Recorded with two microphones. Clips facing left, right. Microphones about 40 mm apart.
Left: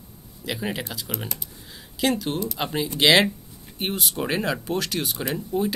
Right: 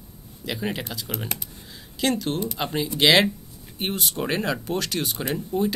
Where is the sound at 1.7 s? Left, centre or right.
Centre.